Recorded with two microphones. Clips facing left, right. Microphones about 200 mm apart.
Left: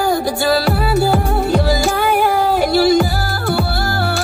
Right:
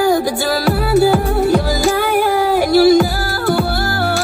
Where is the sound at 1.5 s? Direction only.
55° right (ahead or behind).